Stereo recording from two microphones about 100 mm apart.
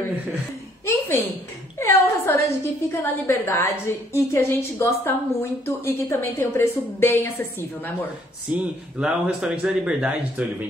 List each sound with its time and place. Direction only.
0.8 s a woman's voice: 20° left (ahead or behind)
8.5 s speech: 10° right (ahead or behind)